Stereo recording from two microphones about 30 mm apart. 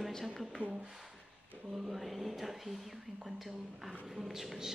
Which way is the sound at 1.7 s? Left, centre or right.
Centre.